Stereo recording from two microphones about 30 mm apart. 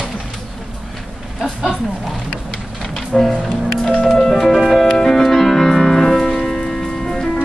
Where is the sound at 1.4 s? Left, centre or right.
Right.